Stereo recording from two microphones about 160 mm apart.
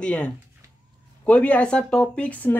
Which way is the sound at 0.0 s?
5° left (ahead or behind).